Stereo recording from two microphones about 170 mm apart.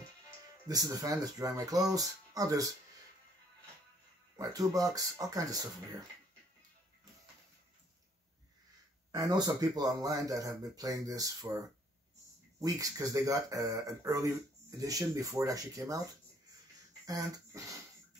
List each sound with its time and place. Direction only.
0.7 s speech: 20° right (ahead or behind)
4.4 s speech: 20° right (ahead or behind)
9.1 s speech: 25° right (ahead or behind)
17.0 s speech: 20° right (ahead or behind)